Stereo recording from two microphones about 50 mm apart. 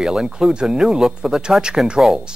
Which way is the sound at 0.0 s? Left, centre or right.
Centre.